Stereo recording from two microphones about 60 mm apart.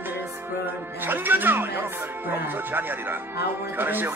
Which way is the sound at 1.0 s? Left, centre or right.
Right.